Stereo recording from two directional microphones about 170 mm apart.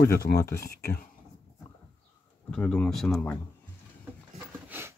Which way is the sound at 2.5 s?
5° left (ahead or behind).